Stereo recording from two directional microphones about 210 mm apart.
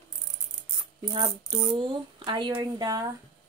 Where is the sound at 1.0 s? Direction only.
20° right (ahead or behind).